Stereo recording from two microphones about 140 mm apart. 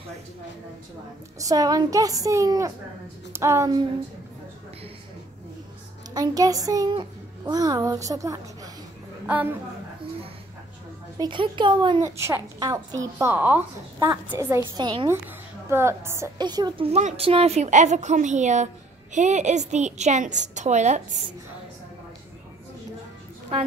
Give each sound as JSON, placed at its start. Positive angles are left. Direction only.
{"t": 1.4, "sound": "a child's voice", "side_deg": -25}
{"t": 6.1, "sound": "a child's voice", "side_deg": -25}
{"t": 9.2, "sound": "a woman's voice", "side_deg": -10}
{"t": 11.1, "sound": "a woman's voice", "side_deg": -35}
{"t": 12.0, "sound": "a child's voice", "side_deg": -20}
{"t": 14.7, "sound": "a woman's voice", "side_deg": -30}
{"t": 15.7, "sound": "a child's voice", "side_deg": -20}
{"t": 16.3, "sound": "a woman's voice", "side_deg": -30}
{"t": 16.8, "sound": "a woman's voice", "side_deg": -45}